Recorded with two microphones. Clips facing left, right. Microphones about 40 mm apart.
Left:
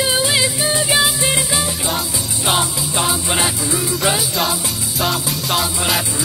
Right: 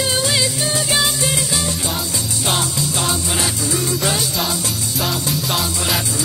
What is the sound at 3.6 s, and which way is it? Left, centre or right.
Music, centre.